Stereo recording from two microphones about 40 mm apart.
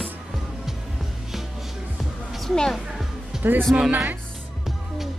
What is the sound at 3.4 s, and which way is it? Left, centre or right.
Speech, right.